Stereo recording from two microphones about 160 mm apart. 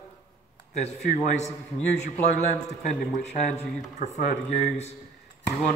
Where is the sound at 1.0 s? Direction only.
45° left (ahead or behind).